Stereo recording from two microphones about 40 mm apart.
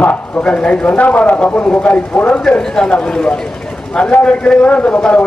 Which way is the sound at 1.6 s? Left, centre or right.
Left.